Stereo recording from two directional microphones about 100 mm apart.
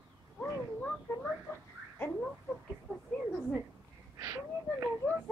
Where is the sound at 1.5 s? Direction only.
30° left (ahead or behind).